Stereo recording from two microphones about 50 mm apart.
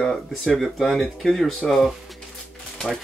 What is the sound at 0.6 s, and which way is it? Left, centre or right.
Speech, centre.